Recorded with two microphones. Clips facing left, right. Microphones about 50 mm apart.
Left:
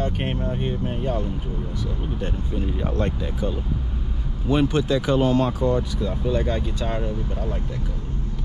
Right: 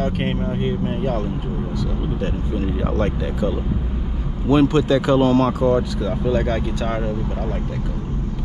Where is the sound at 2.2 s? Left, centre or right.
Right.